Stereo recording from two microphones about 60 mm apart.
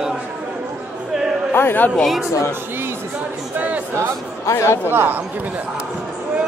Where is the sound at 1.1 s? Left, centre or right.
Centre.